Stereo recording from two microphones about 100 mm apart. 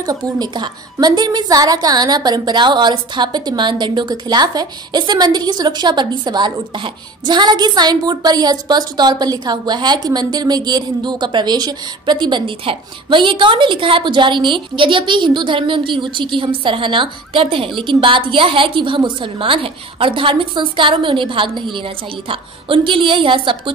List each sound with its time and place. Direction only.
0.0 s a woman's voice: 40° right (ahead or behind); by 23.7 s 55° right (ahead or behind)